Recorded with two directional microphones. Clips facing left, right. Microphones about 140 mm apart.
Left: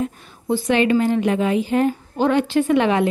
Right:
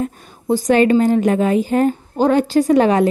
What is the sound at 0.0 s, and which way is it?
A woman's voice, 45° right (ahead or behind).